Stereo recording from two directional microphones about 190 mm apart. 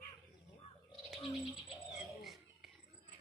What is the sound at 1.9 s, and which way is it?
Bird, centre (ahead or behind).